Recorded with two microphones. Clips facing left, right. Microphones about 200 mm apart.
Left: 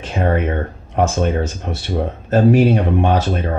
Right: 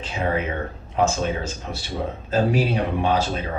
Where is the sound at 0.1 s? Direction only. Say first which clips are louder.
Left 6 dB; 55° left (ahead or behind).